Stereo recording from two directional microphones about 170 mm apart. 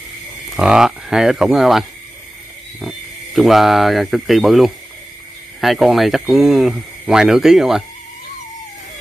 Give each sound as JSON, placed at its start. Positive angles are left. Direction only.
{"t": 0.6, "sound": "speech", "side_deg": -5}
{"t": 3.3, "sound": "speech", "side_deg": 0}